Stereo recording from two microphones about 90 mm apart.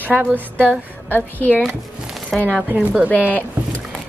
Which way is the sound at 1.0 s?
20° left (ahead or behind).